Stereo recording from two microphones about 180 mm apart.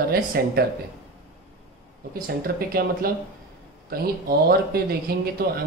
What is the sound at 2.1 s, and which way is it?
Speech, 55° right (ahead or behind).